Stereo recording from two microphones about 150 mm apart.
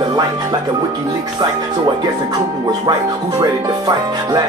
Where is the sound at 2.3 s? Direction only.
25° right (ahead or behind).